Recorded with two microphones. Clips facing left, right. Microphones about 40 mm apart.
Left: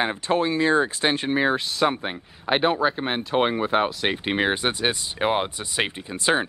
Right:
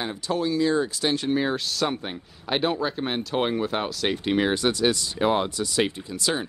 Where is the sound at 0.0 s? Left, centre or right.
Left.